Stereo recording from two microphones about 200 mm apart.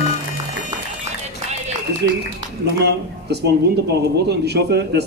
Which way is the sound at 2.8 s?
55° right (ahead or behind).